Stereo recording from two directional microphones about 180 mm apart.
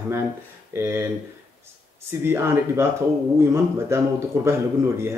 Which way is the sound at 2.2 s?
15° right (ahead or behind).